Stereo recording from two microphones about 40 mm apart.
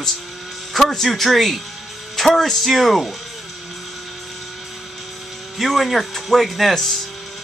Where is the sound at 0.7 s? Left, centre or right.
Centre.